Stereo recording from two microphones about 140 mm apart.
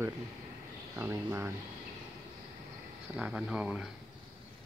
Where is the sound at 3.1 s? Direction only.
10° right (ahead or behind).